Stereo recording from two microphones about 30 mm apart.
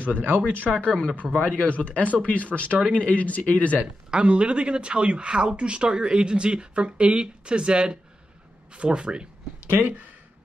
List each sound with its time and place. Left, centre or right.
0.0 s speech: right
0.7 s speech: centre
1.3 s speech: left
3.8 s speech: right
9.8 s speech: right